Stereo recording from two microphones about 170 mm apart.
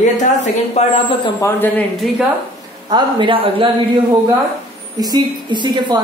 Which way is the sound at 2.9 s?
30° right (ahead or behind).